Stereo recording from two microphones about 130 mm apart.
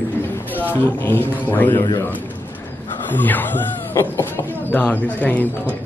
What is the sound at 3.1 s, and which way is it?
Speech, 15° left (ahead or behind).